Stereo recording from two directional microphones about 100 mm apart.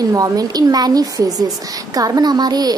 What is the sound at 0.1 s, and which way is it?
Speech, 40° right (ahead or behind).